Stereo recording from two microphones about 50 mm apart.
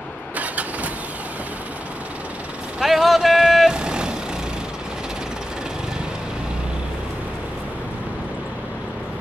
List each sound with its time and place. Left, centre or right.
2.8 s vehicle: centre